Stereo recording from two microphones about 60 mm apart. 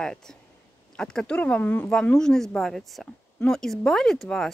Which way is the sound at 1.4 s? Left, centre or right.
Left.